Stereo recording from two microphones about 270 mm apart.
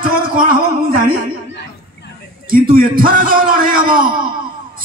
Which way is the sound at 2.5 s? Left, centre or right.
Right.